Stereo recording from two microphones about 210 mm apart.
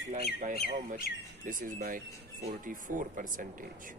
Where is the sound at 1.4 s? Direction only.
40° right (ahead or behind).